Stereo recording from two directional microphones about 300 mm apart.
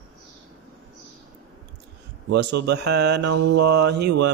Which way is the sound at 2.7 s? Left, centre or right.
Right.